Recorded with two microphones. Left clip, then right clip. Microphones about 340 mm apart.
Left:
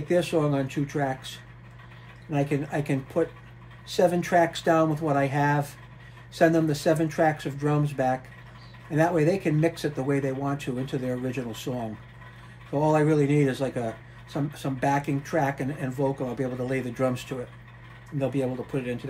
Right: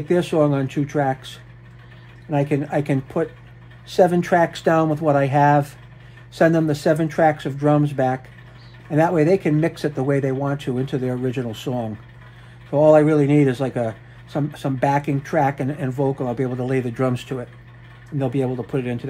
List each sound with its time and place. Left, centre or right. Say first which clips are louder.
0.1 s speech: right 6 dB; right
2.3 s speech: right 7 dB; right
12.7 s speech: right 9 dB; right